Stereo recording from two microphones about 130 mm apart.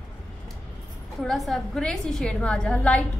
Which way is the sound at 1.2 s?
Centre (ahead or behind).